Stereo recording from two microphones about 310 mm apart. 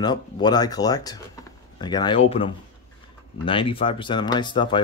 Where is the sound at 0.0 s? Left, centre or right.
Centre.